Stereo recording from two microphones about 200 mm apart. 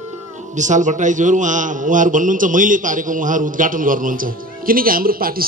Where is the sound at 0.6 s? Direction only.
40° right (ahead or behind).